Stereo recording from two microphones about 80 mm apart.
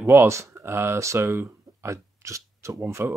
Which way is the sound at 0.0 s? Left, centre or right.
Right.